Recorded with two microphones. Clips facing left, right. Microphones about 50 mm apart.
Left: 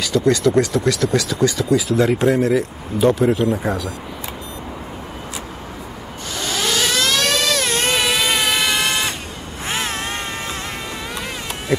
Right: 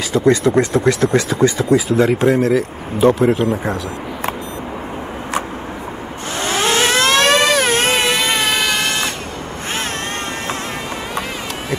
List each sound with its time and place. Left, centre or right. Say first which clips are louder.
0.1 s speech: right 2 dB; right
1.9 s speech: right 2 dB; centre
6.3 s vehicle: right 5 dB; right
8.0 s vehicle: right 2 dB; centre